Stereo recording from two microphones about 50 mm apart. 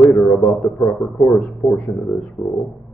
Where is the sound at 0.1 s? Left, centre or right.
Left.